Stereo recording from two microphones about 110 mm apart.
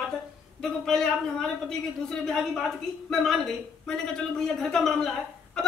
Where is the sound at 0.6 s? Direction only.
5° left (ahead or behind).